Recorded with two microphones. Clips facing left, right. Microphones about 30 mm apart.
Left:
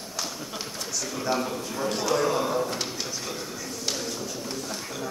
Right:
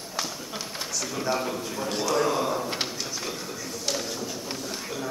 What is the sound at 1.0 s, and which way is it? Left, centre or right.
A man's voice, centre.